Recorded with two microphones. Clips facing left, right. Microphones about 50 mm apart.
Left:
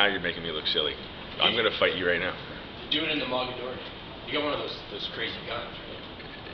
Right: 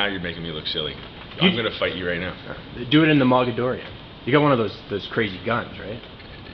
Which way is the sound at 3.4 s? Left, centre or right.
Right.